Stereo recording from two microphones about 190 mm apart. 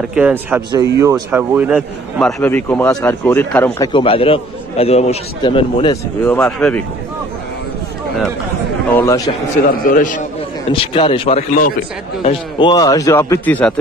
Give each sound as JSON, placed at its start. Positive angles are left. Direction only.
{"t": 0.1, "sound": "speech", "side_deg": -5}
{"t": 2.1, "sound": "a man's voice", "side_deg": 5}
{"t": 3.9, "sound": "a man's voice", "side_deg": 30}
{"t": 6.2, "sound": "a man's voice", "side_deg": 10}
{"t": 9.0, "sound": "a man's voice", "side_deg": 20}
{"t": 9.6, "sound": "a man's voice", "side_deg": 45}
{"t": 10.7, "sound": "speech", "side_deg": 30}
{"t": 12.3, "sound": "a man's voice", "side_deg": 25}